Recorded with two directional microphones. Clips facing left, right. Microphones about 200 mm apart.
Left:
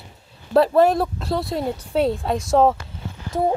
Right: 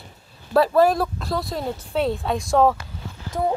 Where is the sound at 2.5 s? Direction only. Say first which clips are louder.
Left 1 dB; 25° left (ahead or behind).